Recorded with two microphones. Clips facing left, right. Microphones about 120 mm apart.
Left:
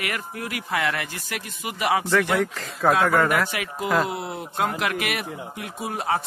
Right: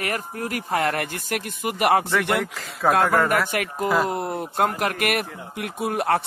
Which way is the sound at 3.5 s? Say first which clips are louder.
Right 4 dB; 50° right (ahead or behind).